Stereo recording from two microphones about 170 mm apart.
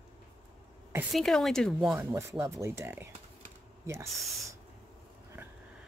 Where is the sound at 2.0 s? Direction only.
15° right (ahead or behind).